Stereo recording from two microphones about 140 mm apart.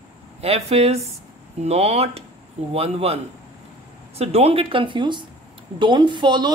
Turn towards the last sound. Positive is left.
turn(degrees=-30)  # may be behind; listen again after turning